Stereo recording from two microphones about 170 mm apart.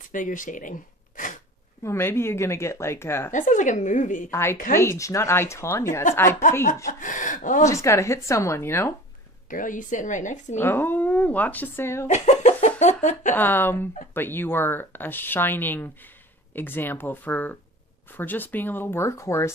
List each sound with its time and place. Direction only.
0.1 s speech: 50° left (ahead or behind)
1.8 s speech: 15° left (ahead or behind)
3.3 s a woman's voice: 50° left (ahead or behind)
4.3 s speech: 15° left (ahead or behind)
6.9 s a woman's voice: 50° left (ahead or behind)
7.6 s speech: 15° left (ahead or behind)
9.5 s a woman's voice: 50° left (ahead or behind)
10.6 s speech: 15° left (ahead or behind)
12.1 s speech: 45° left (ahead or behind)
13.4 s speech: 10° left (ahead or behind)